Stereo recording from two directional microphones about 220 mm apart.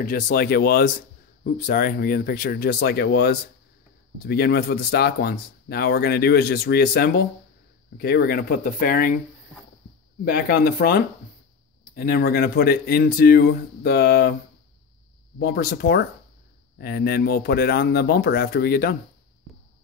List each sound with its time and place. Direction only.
0.0 s speech: 40° left (ahead or behind)
10.2 s speech: 45° left (ahead or behind)
15.3 s speech: 45° left (ahead or behind)